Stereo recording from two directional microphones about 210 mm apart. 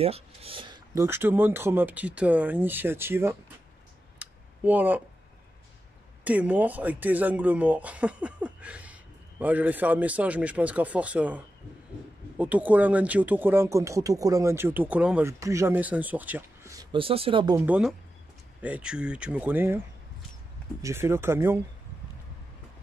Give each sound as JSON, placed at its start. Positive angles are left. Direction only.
{"t": 0.0, "sound": "speech", "side_deg": -30}
{"t": 0.9, "sound": "speech", "side_deg": -10}
{"t": 4.2, "sound": "a sound", "side_deg": -10}
{"t": 6.2, "sound": "speech", "side_deg": -5}
{"t": 17.6, "sound": "speech", "side_deg": -5}
{"t": 20.8, "sound": "speech", "side_deg": -10}